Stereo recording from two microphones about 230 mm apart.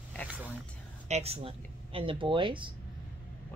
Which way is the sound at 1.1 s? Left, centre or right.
Right.